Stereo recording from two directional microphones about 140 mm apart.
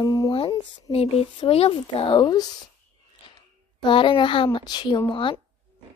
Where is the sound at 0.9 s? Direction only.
45° left (ahead or behind).